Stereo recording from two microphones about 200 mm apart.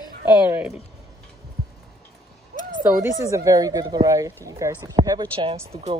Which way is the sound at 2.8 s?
15° right (ahead or behind).